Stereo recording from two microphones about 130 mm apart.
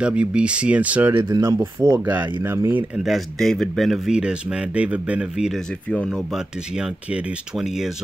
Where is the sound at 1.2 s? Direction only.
35° right (ahead or behind).